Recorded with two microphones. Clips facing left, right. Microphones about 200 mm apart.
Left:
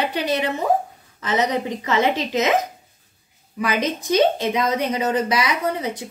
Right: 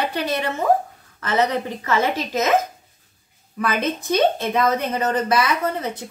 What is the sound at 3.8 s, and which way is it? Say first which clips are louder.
Speech: left 1 dB; 55° right (ahead or behind).